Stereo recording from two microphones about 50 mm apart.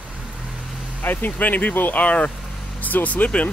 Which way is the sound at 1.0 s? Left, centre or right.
Left.